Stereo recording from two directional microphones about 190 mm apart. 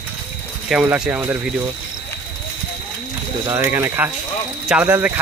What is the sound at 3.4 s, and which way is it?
Speech, 10° right (ahead or behind).